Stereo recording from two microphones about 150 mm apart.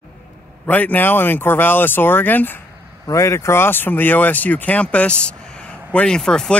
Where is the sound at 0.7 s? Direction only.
10° left (ahead or behind).